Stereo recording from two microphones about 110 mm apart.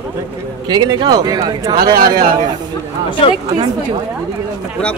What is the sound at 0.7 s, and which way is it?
A man's voice, 40° right (ahead or behind).